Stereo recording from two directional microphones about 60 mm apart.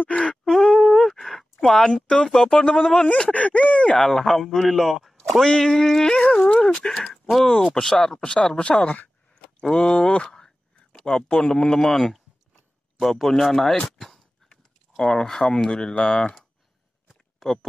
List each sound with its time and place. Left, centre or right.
0.0 s duck: centre
0.3 s duck: centre
1.6 s speech: centre
4.0 s a man's voice: centre; by 9.1 s left
9.4 s a sound: centre
11.1 s speech: centre